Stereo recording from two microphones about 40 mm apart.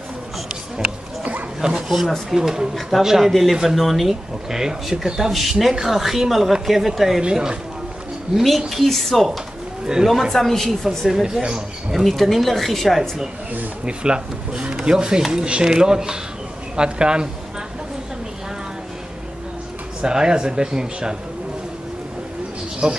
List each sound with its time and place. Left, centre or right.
1.6 s speech: centre
1.9 s speech: centre
2.3 s speech: centre
8.4 s speech: centre
9.9 s speech: centre
10.3 s speech: centre
13.8 s speech: right
20.0 s speech: centre
22.8 s speech: centre